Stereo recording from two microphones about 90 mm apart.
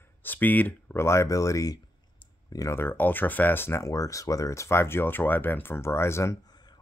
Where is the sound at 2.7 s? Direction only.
25° left (ahead or behind).